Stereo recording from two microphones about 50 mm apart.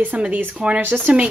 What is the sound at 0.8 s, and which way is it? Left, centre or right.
Speech, right.